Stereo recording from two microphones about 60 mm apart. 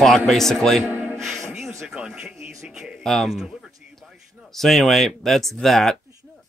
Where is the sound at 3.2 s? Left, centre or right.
Centre.